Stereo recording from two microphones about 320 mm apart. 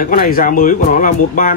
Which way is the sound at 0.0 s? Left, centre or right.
Left.